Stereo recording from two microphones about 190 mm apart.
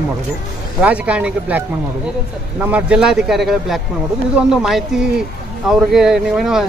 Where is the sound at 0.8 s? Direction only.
5° right (ahead or behind).